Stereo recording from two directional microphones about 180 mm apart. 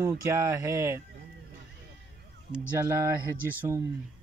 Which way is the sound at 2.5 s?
15° right (ahead or behind).